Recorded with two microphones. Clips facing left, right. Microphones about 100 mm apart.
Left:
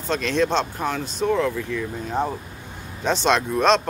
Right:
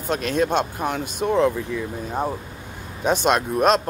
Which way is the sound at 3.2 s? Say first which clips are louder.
Left 1 dB; 10° right (ahead or behind).